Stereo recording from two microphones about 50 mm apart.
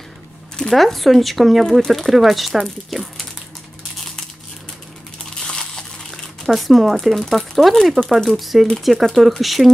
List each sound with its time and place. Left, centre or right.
0.6 s speech: centre
5.3 s crumpling: centre
6.4 s speech: centre